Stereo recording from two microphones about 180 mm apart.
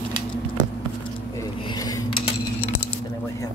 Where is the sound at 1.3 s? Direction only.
20° left (ahead or behind).